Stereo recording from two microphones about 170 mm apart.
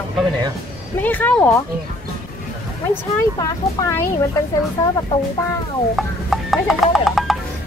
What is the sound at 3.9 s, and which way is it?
Speech, 15° left (ahead or behind).